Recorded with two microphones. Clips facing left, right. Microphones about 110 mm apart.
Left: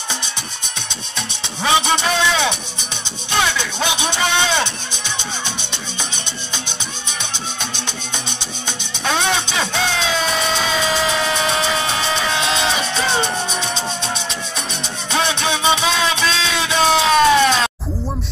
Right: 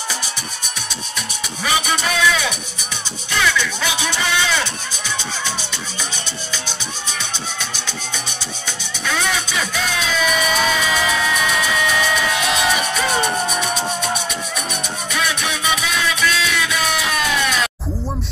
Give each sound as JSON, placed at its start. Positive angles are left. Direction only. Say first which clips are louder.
{"t": 1.1, "sound": "music", "louder": "left 2 dB", "side_deg": 25}
{"t": 8.3, "sound": "music", "louder": "left 1 dB", "side_deg": 25}